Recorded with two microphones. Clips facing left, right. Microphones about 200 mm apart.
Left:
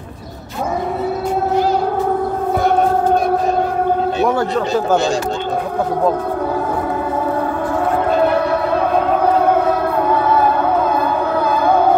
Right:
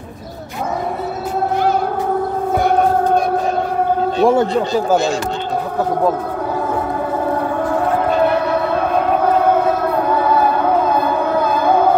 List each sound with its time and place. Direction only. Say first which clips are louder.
4.2 s a man's voice: right 7 dB; 25° right (ahead or behind)